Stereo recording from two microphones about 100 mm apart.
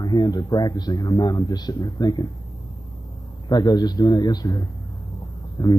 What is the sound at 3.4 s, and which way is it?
Speech, 45° left (ahead or behind).